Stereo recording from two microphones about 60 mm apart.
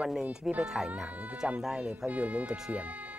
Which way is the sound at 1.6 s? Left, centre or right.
Centre.